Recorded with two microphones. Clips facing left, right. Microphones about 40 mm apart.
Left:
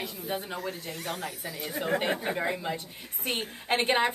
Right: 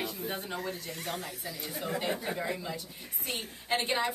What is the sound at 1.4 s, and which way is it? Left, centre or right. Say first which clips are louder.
A woman's voice: left 4 dB; left.